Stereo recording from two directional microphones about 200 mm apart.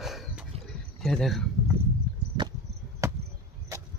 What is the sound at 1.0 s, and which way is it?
Speech, centre (ahead or behind).